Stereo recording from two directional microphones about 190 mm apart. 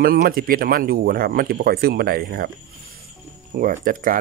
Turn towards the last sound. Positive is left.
turn(degrees=-45)  # may be behind; listen again after turning